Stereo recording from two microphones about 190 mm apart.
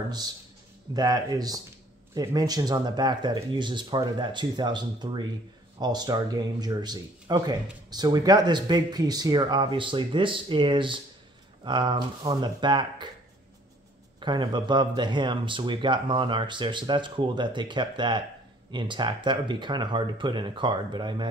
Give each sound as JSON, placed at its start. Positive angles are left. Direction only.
{"t": 0.9, "sound": "speech", "side_deg": -20}
{"t": 14.2, "sound": "speech", "side_deg": -25}